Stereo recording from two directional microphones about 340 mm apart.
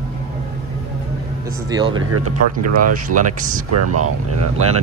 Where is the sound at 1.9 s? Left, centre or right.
Right.